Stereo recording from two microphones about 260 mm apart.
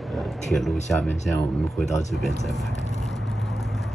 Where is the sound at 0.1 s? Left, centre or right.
Centre.